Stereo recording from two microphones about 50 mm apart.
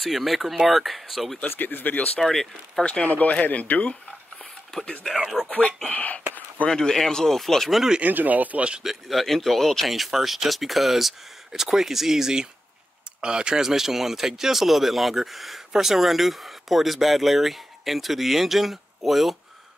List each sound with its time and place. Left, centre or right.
0.0 s speech: centre
1.6 s speech: left
2.1 s speech: centre
2.8 s speech: left
5.0 s speech: centre
5.9 s speech: left
6.7 s speech: centre
8.0 s speech: right
8.8 s speech: centre